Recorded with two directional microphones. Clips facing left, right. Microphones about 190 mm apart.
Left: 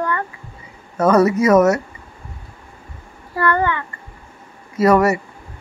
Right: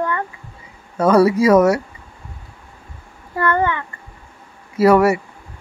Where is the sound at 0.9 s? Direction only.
10° right (ahead or behind).